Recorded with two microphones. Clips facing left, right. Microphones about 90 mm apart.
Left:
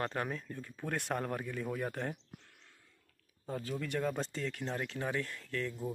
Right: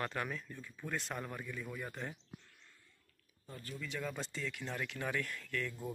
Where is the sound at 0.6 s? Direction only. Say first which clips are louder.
Left 3 dB; 55° left (ahead or behind).